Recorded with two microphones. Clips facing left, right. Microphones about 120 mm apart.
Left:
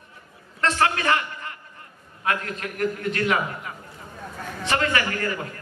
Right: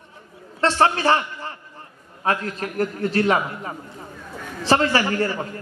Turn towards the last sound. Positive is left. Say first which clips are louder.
# right 5 dB
turn(degrees=-30)  # may be behind; listen again after turning